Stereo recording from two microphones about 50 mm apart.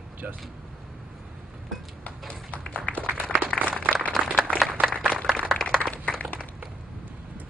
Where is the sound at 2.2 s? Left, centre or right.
Left.